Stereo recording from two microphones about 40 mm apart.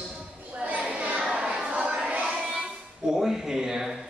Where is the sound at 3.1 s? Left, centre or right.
Centre.